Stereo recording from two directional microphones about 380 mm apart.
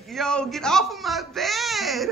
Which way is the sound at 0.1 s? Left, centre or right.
Centre.